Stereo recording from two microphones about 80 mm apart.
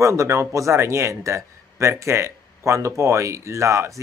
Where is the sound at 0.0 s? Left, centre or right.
Right.